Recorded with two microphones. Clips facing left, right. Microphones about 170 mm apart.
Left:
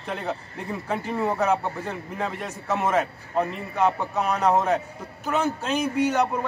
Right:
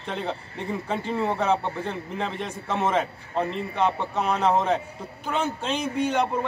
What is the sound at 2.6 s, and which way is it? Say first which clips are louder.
A man's voice: left 1 dB; 5° left (ahead or behind).